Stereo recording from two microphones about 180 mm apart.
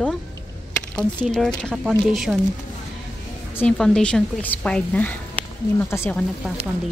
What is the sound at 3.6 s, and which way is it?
A woman's voice, 5° left (ahead or behind).